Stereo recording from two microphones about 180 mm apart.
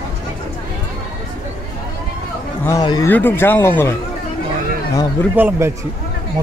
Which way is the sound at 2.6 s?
20° left (ahead or behind).